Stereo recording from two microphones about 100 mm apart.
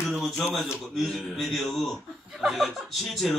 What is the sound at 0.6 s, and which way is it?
Speech, centre (ahead or behind).